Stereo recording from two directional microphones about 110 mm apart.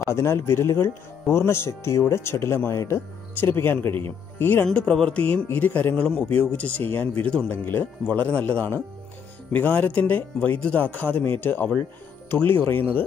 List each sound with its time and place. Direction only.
0.0 s speech: 25° left (ahead or behind)
4.6 s a man's voice: 5° left (ahead or behind)